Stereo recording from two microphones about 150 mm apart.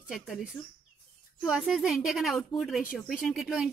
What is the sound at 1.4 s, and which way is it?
Speech, 5° right (ahead or behind).